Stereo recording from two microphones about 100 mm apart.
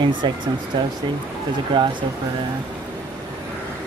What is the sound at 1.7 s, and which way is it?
Speech, 55° right (ahead or behind).